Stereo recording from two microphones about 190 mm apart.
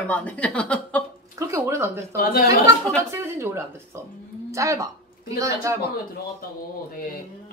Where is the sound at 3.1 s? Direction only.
15° right (ahead or behind).